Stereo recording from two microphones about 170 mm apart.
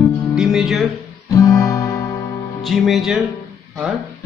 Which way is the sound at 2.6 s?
Centre (ahead or behind).